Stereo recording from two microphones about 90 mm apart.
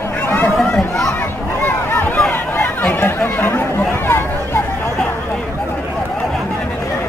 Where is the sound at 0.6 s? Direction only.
10° left (ahead or behind).